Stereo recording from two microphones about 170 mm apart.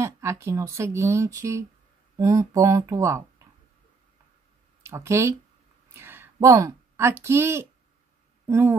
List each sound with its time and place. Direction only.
0.0 s speech: 15° right (ahead or behind)
4.8 s speech: 15° right (ahead or behind)